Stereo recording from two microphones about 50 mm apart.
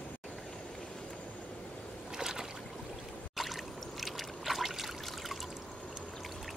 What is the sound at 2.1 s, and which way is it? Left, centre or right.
Boat, centre.